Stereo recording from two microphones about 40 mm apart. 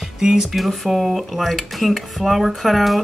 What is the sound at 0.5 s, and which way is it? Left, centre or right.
Speech, centre.